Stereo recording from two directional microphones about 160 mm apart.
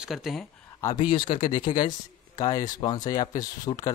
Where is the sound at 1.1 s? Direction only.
30° left (ahead or behind).